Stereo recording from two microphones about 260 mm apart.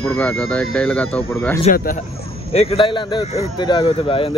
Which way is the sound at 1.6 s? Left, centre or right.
Left.